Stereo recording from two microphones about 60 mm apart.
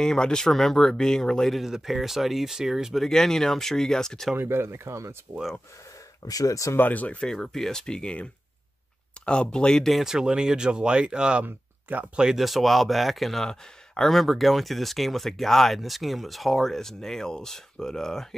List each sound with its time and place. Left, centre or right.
0.0 s speech: centre
3.0 s speech: centre
4.4 s speech: right
6.2 s speech: left
6.8 s speech: left
7.4 s speech: centre
10.0 s speech: centre
11.4 s speech: right
12.2 s speech: centre